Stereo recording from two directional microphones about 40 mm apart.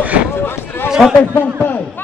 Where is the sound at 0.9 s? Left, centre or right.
Centre.